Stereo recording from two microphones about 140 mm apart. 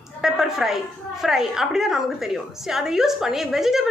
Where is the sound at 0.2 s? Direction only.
5° right (ahead or behind).